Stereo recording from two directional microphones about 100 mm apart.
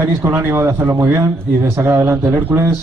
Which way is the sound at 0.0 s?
25° right (ahead or behind).